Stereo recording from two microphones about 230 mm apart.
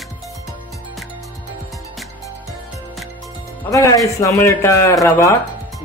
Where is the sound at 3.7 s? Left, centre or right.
Centre.